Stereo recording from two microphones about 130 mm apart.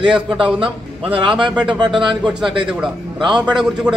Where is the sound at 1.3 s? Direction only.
5° right (ahead or behind).